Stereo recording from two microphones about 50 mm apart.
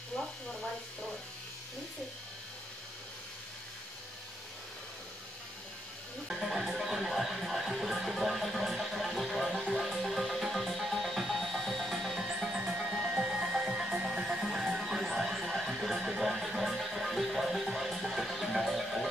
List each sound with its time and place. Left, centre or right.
6.2 s music: centre